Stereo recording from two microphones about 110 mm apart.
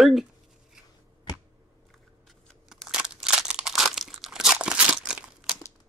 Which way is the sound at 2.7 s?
5° right (ahead or behind).